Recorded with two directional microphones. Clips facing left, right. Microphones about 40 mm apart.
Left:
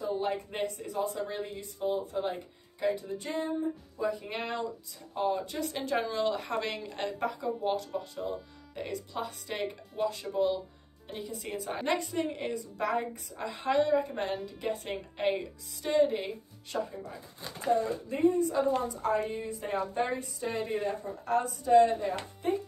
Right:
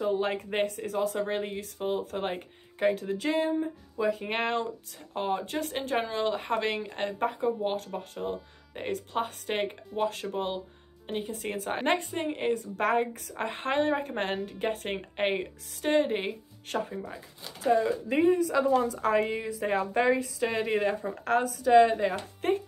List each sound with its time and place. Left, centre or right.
0.0 s a woman's voice: right
4.0 s a woman's voice: right
17.6 s a woman's voice: right
21.9 s a woman's voice: right